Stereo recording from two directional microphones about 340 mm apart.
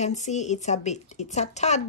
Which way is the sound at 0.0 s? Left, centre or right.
Left.